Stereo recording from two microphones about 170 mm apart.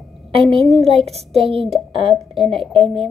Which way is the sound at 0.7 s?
Centre (ahead or behind).